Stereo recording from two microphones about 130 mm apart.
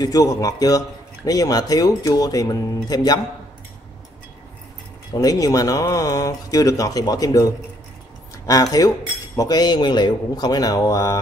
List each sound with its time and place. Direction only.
0.0 s speech: 25° left (ahead or behind)
5.1 s speech: 30° left (ahead or behind)
8.5 s speech: 30° left (ahead or behind)